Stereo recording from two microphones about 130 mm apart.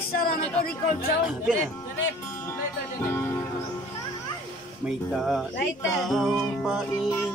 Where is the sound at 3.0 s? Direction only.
20° left (ahead or behind).